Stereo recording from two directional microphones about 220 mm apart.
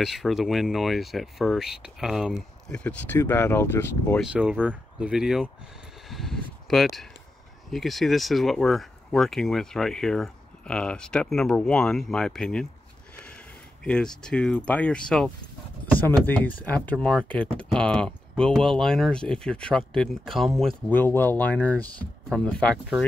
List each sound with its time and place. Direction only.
0.0 s speech: centre (ahead or behind)
4.2 s speech: 5° right (ahead or behind)
6.0 s a sound: centre (ahead or behind)
7.7 s speech: centre (ahead or behind)
13.8 s speech: 5° left (ahead or behind)